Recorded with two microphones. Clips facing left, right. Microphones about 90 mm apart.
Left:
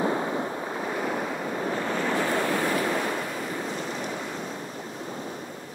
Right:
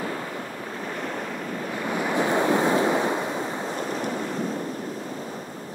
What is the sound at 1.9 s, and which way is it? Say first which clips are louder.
Waves: right 5 dB; 15° right (ahead or behind).